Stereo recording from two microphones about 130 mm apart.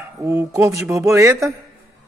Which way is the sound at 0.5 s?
25° right (ahead or behind).